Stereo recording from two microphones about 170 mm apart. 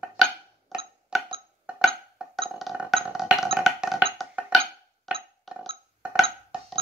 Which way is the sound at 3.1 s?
5° right (ahead or behind).